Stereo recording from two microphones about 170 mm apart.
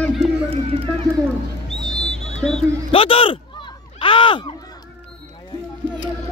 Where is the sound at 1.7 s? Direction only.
5° left (ahead or behind).